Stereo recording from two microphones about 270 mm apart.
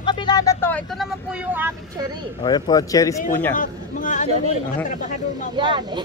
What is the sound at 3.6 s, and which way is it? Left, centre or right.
Speech, left.